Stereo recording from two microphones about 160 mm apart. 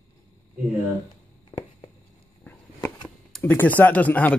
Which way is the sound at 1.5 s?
25° left (ahead or behind).